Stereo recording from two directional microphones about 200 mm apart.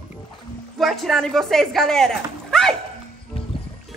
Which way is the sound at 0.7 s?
Centre (ahead or behind).